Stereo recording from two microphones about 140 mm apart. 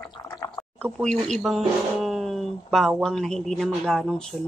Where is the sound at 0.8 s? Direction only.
5° left (ahead or behind).